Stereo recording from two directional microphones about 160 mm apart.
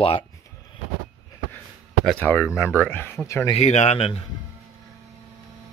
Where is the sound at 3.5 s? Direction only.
45° left (ahead or behind).